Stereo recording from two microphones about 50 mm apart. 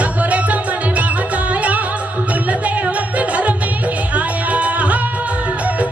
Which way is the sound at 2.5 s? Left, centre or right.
Right.